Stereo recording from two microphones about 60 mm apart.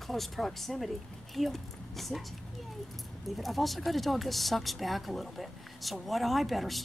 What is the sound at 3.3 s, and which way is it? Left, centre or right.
Speech, centre.